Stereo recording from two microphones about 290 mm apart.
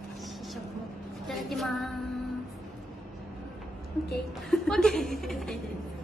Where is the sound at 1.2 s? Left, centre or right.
Centre.